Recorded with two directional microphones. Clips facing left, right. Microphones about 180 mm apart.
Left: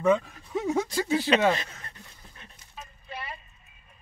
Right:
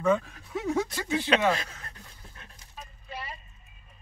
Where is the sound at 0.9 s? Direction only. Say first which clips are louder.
Left 4 dB; 35° left (ahead or behind).